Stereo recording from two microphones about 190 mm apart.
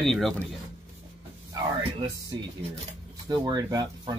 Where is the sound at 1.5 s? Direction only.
25° right (ahead or behind).